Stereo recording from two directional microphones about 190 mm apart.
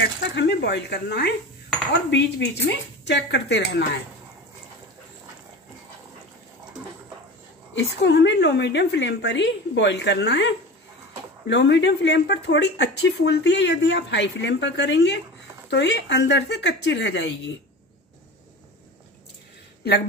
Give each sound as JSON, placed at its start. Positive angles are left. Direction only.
{"t": 0.2, "sound": "speech", "side_deg": 65}
{"t": 7.7, "sound": "speech", "side_deg": 65}